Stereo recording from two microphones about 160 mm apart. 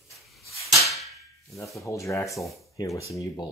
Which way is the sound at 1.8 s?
20° left (ahead or behind).